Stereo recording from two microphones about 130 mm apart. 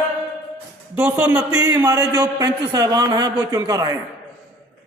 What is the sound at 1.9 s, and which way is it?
A man's voice, 30° right (ahead or behind).